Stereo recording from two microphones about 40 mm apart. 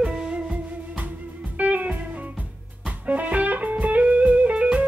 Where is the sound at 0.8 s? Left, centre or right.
Right.